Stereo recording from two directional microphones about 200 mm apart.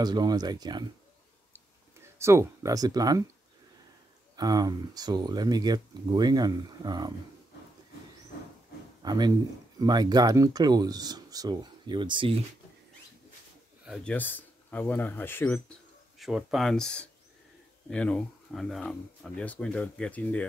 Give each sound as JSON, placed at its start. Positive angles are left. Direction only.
{"t": 0.0, "sound": "speech", "side_deg": -20}
{"t": 1.5, "sound": "a sound", "side_deg": -15}
{"t": 4.4, "sound": "speech", "side_deg": -20}
{"t": 9.0, "sound": "speech", "side_deg": -20}
{"t": 13.8, "sound": "a man's voice", "side_deg": 0}
{"t": 14.1, "sound": "speech", "side_deg": 10}
{"t": 16.2, "sound": "speech", "side_deg": 0}